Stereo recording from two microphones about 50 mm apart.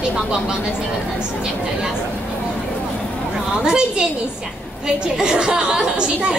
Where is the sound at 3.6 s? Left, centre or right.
Centre.